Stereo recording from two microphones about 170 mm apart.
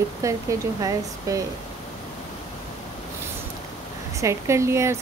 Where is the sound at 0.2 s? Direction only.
20° right (ahead or behind).